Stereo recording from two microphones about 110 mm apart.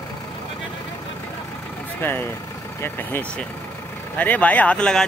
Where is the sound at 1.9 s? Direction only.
20° left (ahead or behind).